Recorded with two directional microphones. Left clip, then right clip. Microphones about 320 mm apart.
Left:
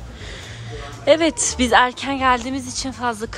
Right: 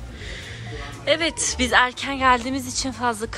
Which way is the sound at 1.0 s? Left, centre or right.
Centre.